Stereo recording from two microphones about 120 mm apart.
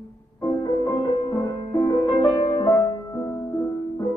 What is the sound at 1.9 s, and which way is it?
Music, 40° left (ahead or behind).